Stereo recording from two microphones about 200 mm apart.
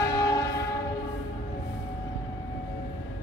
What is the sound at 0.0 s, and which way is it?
Train horn, 15° left (ahead or behind).